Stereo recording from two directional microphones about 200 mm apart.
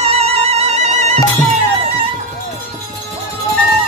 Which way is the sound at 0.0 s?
30° right (ahead or behind).